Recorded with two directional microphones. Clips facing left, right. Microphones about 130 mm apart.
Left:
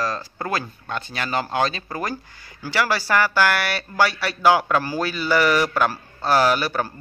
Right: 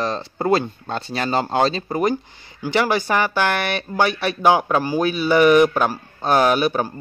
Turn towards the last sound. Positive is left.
turn(degrees=-20)  # may be behind; listen again after turning